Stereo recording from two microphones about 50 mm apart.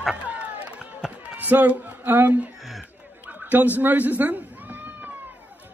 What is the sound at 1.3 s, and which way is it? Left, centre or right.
Speech, right.